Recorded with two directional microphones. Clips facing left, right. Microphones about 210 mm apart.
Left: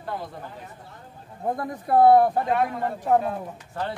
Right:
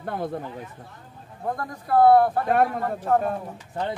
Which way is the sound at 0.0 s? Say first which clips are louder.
Right 4 dB; 55° right (ahead or behind).